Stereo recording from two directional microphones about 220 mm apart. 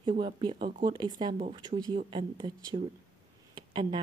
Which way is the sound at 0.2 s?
20° right (ahead or behind).